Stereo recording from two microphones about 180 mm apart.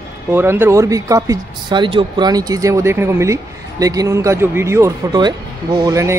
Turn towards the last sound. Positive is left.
turn(degrees=-20)  # may be behind; listen again after turning